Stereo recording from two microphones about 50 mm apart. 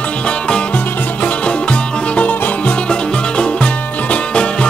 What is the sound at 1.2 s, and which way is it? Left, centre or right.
Music, left.